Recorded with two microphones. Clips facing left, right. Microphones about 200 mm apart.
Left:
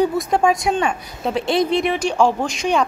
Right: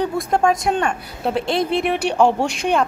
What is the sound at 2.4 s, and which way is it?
Speech, 60° right (ahead or behind).